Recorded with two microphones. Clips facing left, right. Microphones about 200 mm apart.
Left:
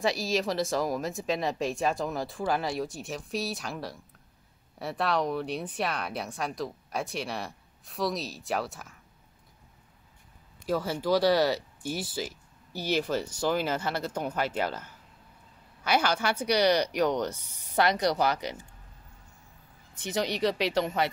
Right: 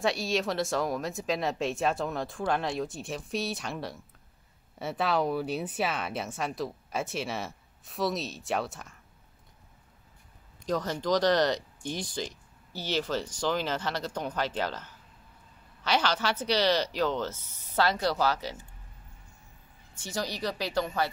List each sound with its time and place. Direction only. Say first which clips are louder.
0.0 s speech: left 1 dB; centre (ahead or behind)
10.6 s speech: left 1 dB; 10° left (ahead or behind)
19.9 s speech: left 4 dB; 20° left (ahead or behind)